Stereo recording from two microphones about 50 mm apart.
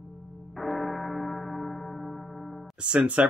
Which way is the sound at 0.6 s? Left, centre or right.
Centre.